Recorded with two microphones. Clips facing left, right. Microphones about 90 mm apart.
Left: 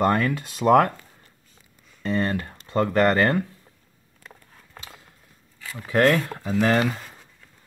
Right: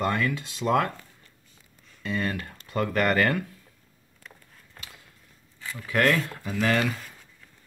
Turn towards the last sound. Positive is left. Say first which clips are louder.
# left 4 dB
turn(degrees=35)  # may be behind; listen again after turning